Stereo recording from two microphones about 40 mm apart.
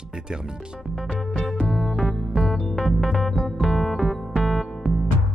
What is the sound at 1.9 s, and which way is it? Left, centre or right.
Music, centre.